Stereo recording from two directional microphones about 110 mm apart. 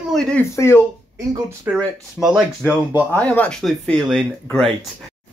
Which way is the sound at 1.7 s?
15° right (ahead or behind).